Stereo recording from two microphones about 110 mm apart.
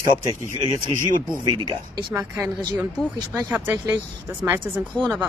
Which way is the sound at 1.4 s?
45° right (ahead or behind).